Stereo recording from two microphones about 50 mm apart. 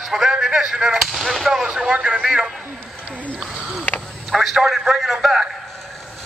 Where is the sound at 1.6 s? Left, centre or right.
Centre.